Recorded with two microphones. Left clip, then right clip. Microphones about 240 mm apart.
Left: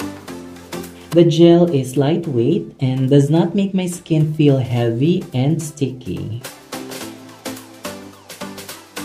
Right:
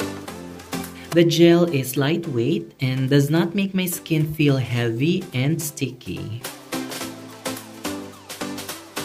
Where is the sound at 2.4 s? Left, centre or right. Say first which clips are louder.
Left 5 dB; centre.